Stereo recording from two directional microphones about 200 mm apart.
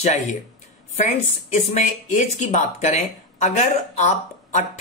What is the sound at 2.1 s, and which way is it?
Speech, 35° left (ahead or behind).